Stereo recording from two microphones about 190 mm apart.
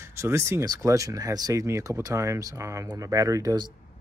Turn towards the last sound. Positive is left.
turn(degrees=-20)  # may be behind; listen again after turning